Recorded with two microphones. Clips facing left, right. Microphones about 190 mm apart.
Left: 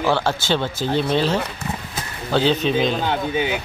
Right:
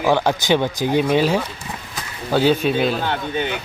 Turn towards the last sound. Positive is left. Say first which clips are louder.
# left 2 dB
turn(degrees=5)  # may be behind; listen again after turning